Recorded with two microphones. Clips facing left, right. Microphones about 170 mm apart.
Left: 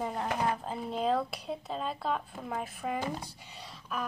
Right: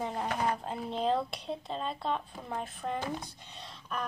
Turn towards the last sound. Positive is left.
turn(degrees=5)  # may be behind; listen again after turning